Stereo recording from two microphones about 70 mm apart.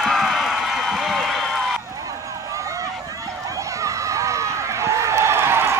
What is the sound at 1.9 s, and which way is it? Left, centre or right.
Run, right.